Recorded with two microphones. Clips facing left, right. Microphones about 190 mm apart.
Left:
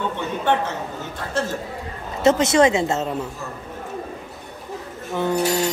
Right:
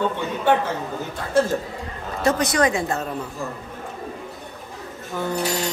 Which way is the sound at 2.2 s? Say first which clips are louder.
Left 4 dB; 25° left (ahead or behind).